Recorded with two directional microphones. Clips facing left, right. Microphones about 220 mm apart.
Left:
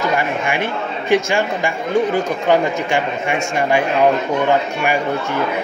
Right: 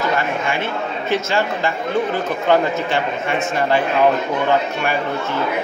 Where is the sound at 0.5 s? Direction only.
15° left (ahead or behind).